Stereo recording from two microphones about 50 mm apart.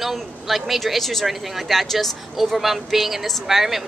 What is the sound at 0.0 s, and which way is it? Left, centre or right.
Speech, centre.